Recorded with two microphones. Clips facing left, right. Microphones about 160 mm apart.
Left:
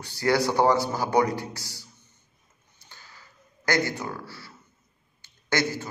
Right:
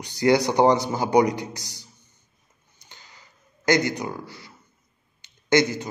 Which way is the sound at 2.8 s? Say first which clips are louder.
Even; 20° right (ahead or behind).